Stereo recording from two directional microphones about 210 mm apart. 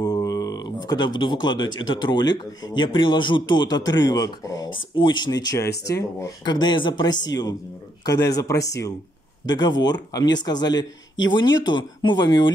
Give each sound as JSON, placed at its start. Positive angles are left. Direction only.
{"t": 0.0, "sound": "a man's voice", "side_deg": 20}